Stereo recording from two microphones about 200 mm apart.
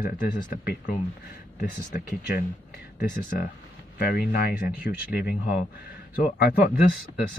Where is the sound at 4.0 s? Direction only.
50° left (ahead or behind).